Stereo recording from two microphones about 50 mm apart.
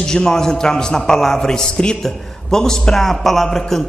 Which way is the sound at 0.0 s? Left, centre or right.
Centre.